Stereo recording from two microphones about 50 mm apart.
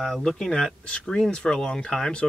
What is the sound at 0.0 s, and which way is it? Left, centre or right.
Speech, centre.